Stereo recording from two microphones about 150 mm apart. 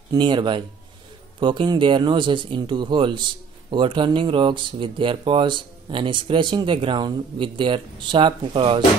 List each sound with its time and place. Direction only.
0.1 s speech: 30° right (ahead or behind)